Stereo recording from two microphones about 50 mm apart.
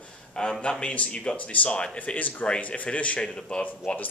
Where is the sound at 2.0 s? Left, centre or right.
Left.